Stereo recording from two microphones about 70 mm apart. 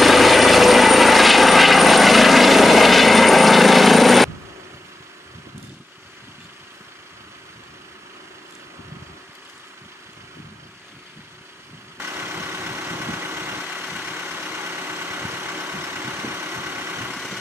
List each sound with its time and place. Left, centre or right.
0.0 s vehicle: centre
12.0 s vehicle: right
17.1 s vehicle: centre